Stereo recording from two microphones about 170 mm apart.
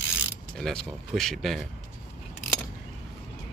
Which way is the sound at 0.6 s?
5° left (ahead or behind).